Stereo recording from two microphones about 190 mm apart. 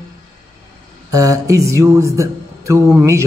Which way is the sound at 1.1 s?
15° right (ahead or behind).